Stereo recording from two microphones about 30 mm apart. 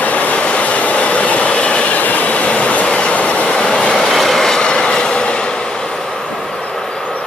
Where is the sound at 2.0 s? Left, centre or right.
Left.